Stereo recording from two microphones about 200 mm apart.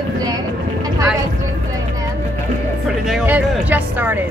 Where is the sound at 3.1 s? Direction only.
10° right (ahead or behind).